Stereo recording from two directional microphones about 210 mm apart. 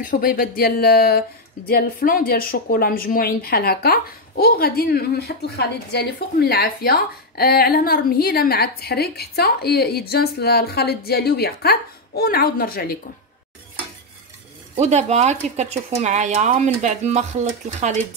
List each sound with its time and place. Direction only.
0.0 s a woman's voice: 40° left (ahead or behind)
14.8 s speech: 30° right (ahead or behind)